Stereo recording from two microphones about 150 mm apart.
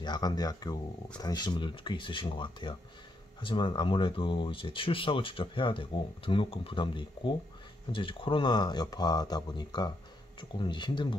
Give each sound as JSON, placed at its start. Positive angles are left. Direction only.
{"t": 0.0, "sound": "speech", "side_deg": 30}